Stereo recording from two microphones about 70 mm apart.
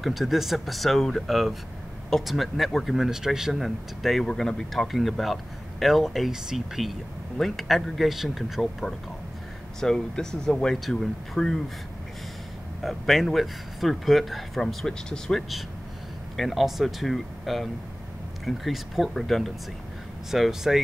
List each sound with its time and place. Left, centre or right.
0.0 s speech: centre
12.8 s speech: centre